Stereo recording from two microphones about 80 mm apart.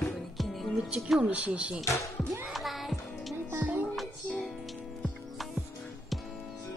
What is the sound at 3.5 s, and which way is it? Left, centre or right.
Music, right.